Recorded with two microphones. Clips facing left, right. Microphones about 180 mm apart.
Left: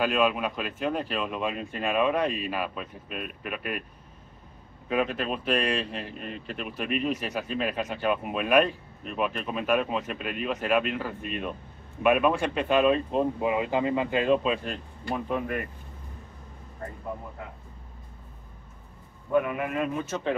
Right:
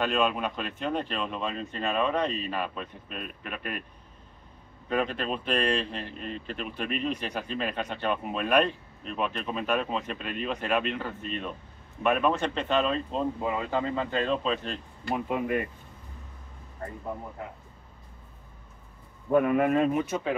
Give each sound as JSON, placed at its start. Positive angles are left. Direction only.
{"t": 0.0, "sound": "speech", "side_deg": 5}
{"t": 4.8, "sound": "speech", "side_deg": 5}
{"t": 15.2, "sound": "speech", "side_deg": -15}
{"t": 19.3, "sound": "a man's voice", "side_deg": -40}
{"t": 19.8, "sound": "speech", "side_deg": -20}